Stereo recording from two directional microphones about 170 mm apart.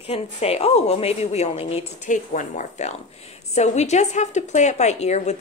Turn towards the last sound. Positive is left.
turn(degrees=40)  # may be behind; listen again after turning